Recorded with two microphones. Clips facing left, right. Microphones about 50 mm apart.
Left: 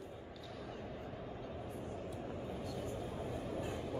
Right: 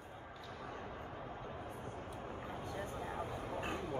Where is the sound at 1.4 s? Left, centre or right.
Right.